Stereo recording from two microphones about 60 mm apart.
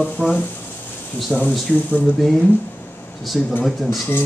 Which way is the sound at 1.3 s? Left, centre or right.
Centre.